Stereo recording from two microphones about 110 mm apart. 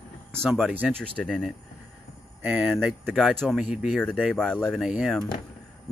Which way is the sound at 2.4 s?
5° right (ahead or behind).